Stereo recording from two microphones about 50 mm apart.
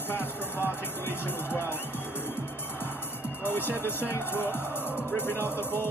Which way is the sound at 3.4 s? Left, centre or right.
Left.